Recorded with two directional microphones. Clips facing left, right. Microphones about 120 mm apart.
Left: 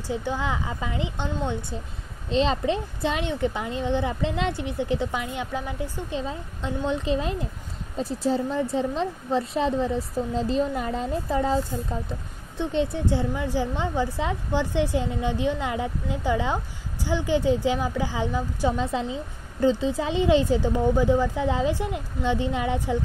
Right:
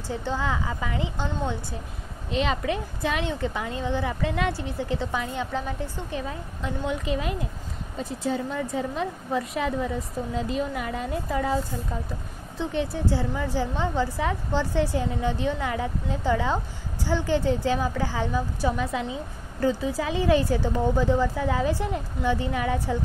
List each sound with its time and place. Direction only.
0.1 s speech: 15° left (ahead or behind)
2.3 s a woman's voice: 30° left (ahead or behind)